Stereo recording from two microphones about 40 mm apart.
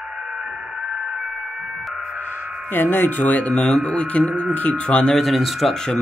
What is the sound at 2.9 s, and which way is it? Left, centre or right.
Speech, left.